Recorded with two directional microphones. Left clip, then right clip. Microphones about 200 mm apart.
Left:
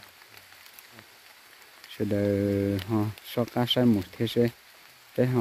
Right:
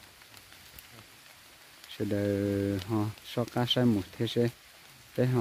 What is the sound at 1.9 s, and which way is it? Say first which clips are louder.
Speech: left 4 dB; centre (ahead or behind).